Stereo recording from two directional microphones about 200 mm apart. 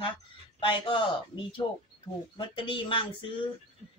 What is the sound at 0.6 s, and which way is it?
Speech, 25° left (ahead or behind).